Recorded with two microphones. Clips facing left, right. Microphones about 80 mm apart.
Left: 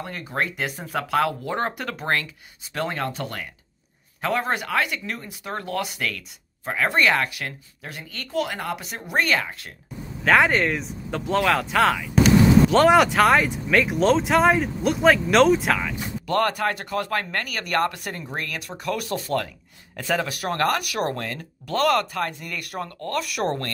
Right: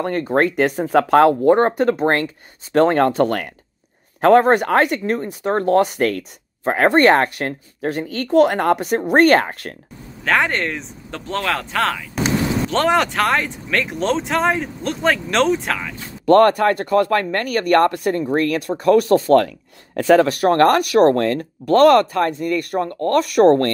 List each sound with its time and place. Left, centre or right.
0.0 s speech: right
2.7 s speech: right
10.2 s speech: centre
16.3 s speech: right